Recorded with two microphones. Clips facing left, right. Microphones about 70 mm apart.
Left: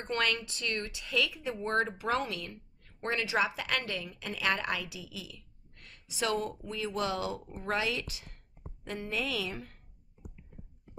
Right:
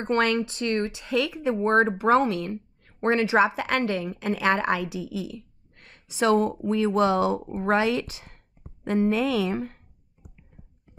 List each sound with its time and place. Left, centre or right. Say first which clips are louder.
0.0 s speech: right 9 dB; right